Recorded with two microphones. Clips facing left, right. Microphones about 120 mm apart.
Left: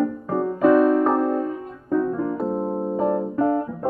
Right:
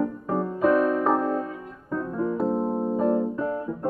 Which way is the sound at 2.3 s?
Centre (ahead or behind).